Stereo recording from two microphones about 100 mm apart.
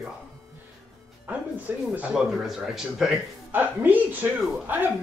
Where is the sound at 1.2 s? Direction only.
15° right (ahead or behind).